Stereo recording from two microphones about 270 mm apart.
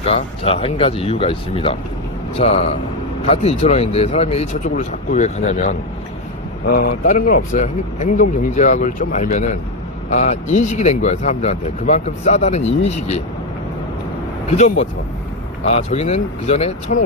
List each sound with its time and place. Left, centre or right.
0.0 s speech: left
15.7 s speech: left